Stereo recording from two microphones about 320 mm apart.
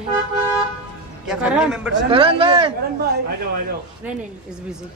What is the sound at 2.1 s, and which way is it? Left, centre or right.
Speech, centre.